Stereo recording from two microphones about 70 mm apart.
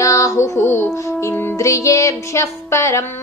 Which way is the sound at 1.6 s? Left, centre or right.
Left.